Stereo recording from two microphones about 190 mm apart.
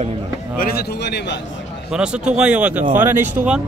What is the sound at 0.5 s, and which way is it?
Speech, 55° left (ahead or behind).